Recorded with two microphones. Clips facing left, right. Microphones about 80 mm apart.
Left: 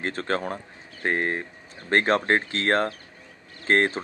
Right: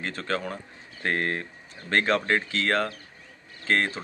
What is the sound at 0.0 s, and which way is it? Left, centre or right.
Speech, left.